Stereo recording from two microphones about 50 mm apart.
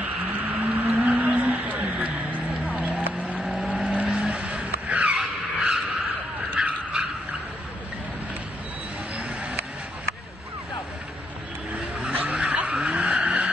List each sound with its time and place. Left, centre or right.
0.0 s vehicle: right
3.3 s vehicle: centre
3.8 s vehicle: right
4.5 s vehicle: right
6.5 s vehicle: right
9.1 s a sound: right
12.1 s vehicle: right
12.4 s skidding: right
12.7 s vehicle: centre